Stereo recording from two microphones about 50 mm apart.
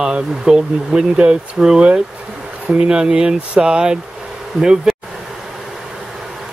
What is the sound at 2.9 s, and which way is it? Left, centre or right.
Speech, centre.